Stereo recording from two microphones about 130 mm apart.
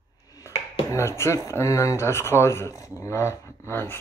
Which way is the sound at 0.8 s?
20° left (ahead or behind).